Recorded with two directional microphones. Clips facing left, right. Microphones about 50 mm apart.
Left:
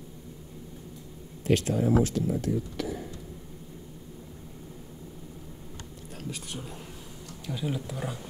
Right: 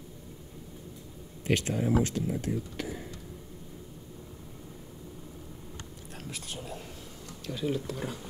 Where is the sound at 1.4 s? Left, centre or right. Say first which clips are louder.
Left 3 dB; right.